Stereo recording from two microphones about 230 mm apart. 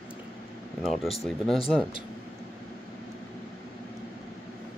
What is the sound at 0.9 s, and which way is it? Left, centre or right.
Speech, left.